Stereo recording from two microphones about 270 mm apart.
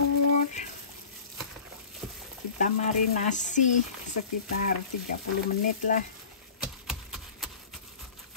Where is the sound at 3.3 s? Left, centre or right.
Left.